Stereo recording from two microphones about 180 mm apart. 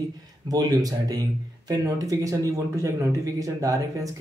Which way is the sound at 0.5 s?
20° right (ahead or behind).